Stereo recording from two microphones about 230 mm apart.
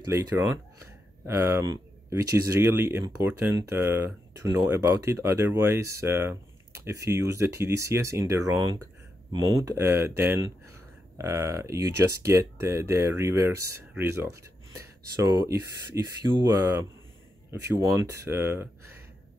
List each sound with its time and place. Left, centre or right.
0.1 s speech: centre